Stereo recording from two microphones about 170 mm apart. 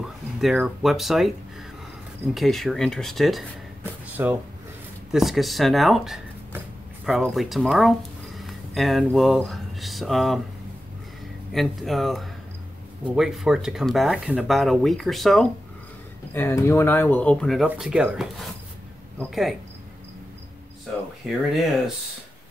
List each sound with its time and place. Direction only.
0.4 s speech: centre (ahead or behind)
2.3 s speech: centre (ahead or behind)
4.2 s speech: 15° right (ahead or behind)
5.1 s speech: centre (ahead or behind)
11.5 s speech: centre (ahead or behind)
16.3 s speech: 15° left (ahead or behind); by 19.5 s centre (ahead or behind)
21.2 s speech: centre (ahead or behind)